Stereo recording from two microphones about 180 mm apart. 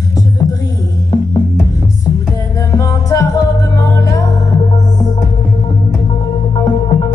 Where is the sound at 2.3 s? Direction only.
20° left (ahead or behind).